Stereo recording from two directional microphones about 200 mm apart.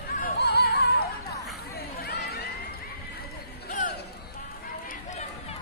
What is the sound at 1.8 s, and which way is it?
Chatter, 55° left (ahead or behind).